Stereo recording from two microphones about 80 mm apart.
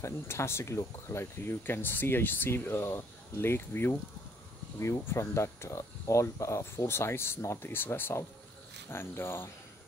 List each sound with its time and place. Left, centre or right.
0.0 s speech: left